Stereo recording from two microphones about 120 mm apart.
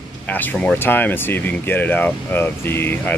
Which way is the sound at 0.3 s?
15° left (ahead or behind).